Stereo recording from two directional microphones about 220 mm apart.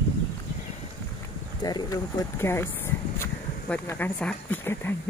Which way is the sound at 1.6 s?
15° left (ahead or behind).